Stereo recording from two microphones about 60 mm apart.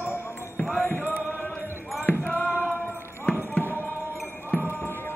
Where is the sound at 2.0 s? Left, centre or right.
Left.